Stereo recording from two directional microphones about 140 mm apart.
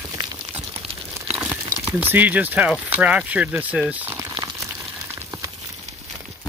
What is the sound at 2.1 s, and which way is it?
Speech, 15° right (ahead or behind).